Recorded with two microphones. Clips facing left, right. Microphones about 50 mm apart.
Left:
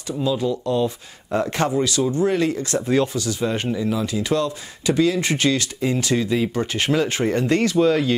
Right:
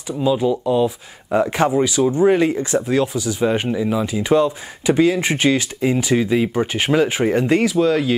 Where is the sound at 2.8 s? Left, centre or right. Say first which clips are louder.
Right 1 dB; centre.